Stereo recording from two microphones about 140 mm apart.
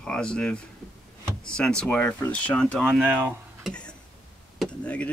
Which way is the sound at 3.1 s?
15° right (ahead or behind).